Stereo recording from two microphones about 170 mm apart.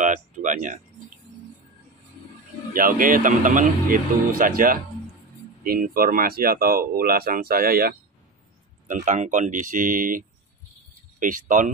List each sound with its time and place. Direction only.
0.0 s a sound: 50° right (ahead or behind)
2.7 s speech: 55° right (ahead or behind)
8.8 s speech: 50° right (ahead or behind)